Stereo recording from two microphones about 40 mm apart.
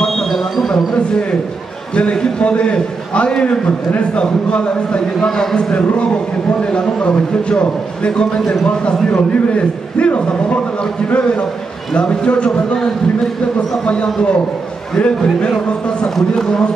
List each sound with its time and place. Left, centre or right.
0.0 s a sound: centre
2.0 s a man's voice: left
5.4 s speech: centre
5.7 s a man's voice: left
15.0 s a man's voice: left